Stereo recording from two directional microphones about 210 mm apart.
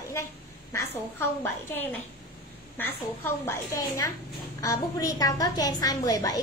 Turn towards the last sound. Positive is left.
turn(degrees=15)  # may be behind; listen again after turning